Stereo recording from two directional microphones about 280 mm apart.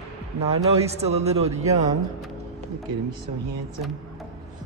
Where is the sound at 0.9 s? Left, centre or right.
Right.